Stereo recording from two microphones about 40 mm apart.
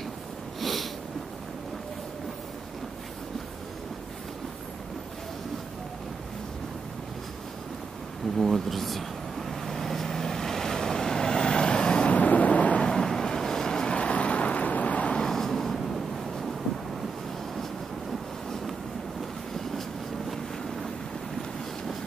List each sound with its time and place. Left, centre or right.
0.6 s sneeze: centre
8.4 s speech: centre
9.5 s vehicle: centre; by 12.1 s left
12.1 s vehicle: left
12.8 s vehicle: centre
13.9 s vehicle: left
15.2 s a sound: centre